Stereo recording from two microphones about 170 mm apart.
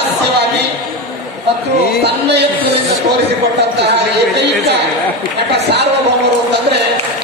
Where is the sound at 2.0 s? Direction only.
75° right (ahead or behind).